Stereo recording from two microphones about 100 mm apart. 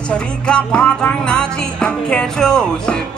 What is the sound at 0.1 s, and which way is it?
Music, 10° left (ahead or behind).